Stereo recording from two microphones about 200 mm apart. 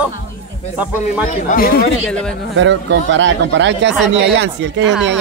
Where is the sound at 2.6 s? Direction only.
65° right (ahead or behind).